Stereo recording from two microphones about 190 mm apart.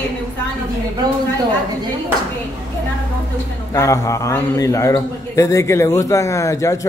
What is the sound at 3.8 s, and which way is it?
A man's voice, 15° left (ahead or behind).